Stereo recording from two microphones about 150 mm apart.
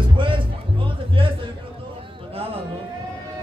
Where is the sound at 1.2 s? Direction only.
35° right (ahead or behind).